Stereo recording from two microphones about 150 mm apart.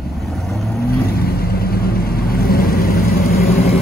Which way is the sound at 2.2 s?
85° left.